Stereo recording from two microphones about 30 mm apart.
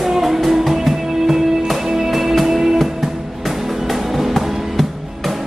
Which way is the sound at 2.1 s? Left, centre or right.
Centre.